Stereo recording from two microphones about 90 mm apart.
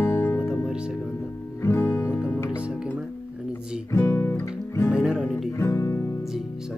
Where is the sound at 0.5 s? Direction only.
10° right (ahead or behind).